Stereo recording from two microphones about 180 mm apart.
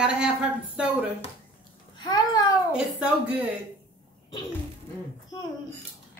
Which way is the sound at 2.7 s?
5° right (ahead or behind).